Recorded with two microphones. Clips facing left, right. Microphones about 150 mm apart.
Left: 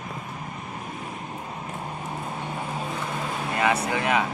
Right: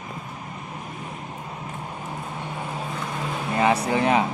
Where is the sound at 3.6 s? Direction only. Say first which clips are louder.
Right 4 dB; 30° right (ahead or behind).